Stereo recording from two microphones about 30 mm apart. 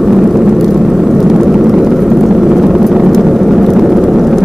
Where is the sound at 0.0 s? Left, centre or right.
Centre.